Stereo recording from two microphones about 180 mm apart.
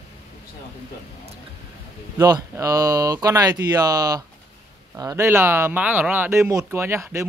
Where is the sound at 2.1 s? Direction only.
20° right (ahead or behind).